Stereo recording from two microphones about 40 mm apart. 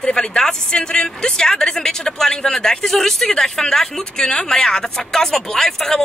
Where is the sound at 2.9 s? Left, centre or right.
Centre.